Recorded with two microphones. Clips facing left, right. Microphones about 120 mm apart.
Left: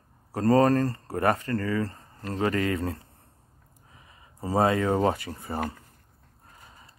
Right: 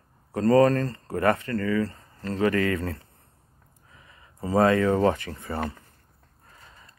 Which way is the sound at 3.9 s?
20° left (ahead or behind).